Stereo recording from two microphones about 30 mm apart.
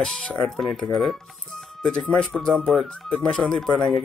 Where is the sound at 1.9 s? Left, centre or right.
Left.